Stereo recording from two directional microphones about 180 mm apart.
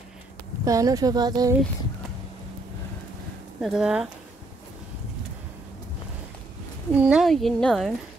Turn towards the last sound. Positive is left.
turn(degrees=5)  # may be behind; listen again after turning